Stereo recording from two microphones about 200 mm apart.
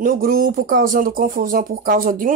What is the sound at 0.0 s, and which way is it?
Speech, 45° right (ahead or behind).